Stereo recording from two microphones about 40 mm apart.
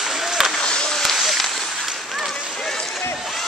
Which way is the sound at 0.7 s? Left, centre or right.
Left.